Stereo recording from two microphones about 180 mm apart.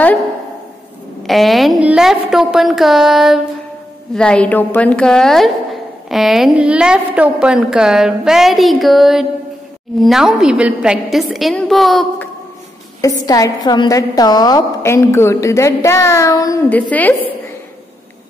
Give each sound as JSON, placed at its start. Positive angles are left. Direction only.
{"t": 1.2, "sound": "a woman's voice", "side_deg": 0}
{"t": 13.0, "sound": "a woman's voice", "side_deg": 20}